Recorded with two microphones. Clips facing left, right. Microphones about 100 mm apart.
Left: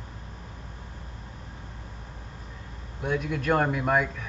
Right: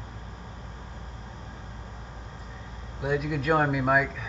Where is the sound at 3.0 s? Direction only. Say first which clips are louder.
Right 1 dB; 5° right (ahead or behind).